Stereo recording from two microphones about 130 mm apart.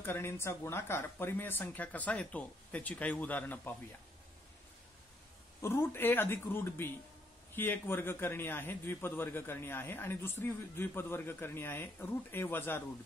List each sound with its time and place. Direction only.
0.0 s a man's voice: 15° left (ahead or behind)
5.6 s a man's voice: 20° left (ahead or behind)